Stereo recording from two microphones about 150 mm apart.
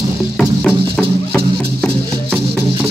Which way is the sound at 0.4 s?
Centre (ahead or behind).